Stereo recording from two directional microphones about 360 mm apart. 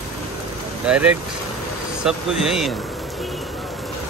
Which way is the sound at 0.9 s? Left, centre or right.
Centre.